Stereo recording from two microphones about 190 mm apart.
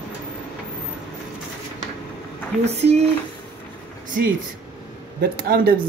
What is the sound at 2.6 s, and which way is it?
Speech, 35° right (ahead or behind).